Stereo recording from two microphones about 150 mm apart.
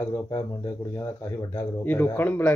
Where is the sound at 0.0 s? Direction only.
15° left (ahead or behind).